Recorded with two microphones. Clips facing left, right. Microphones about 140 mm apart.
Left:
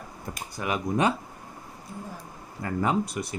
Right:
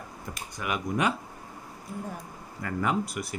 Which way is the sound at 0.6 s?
30° left (ahead or behind).